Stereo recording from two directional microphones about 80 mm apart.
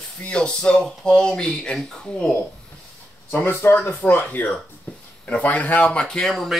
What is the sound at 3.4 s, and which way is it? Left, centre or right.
Speech, left.